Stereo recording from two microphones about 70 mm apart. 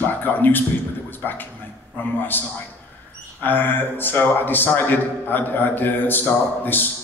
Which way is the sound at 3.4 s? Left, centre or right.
Left.